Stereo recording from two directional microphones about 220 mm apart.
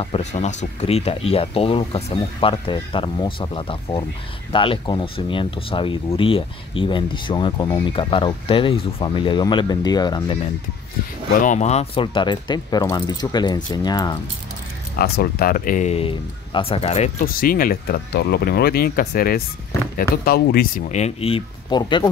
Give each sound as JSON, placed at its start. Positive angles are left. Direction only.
{"t": 0.0, "sound": "speech", "side_deg": 30}
{"t": 11.4, "sound": "speech", "side_deg": 30}
{"t": 15.0, "sound": "speech", "side_deg": 45}